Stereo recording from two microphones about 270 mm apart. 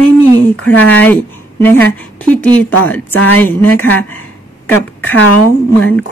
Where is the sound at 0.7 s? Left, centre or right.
Centre.